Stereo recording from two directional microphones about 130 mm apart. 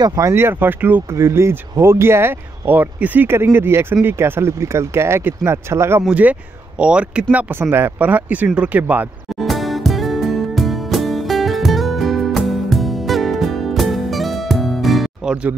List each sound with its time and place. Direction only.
0.0 s speech: 25° right (ahead or behind)
9.4 s music: centre (ahead or behind)